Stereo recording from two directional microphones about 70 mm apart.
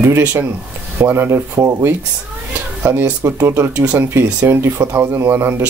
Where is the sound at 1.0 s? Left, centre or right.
Right.